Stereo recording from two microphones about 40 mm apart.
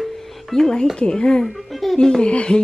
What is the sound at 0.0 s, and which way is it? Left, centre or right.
Music, centre.